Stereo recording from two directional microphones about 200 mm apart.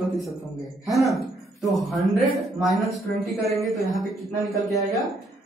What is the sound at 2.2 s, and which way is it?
A man's voice, centre (ahead or behind).